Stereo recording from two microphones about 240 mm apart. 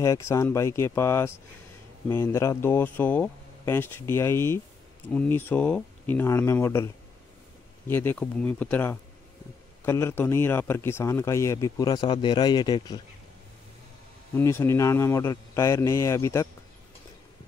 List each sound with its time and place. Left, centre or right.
0.0 s speech: centre
7.9 s speech: centre
14.3 s speech: centre